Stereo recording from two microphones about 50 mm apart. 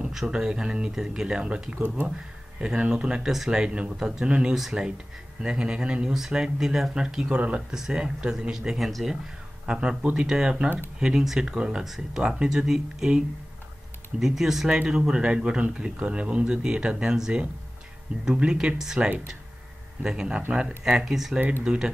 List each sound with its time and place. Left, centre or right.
0.3 s speech: centre
9.7 s speech: right
11.8 s speech: centre
12.2 s speech: centre
14.2 s speech: centre
14.7 s speech: centre
18.9 s speech: right